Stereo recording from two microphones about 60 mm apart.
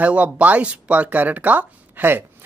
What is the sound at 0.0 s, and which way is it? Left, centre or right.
Speech, right.